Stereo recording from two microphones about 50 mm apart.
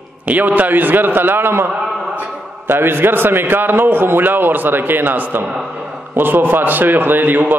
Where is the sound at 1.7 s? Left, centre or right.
Centre.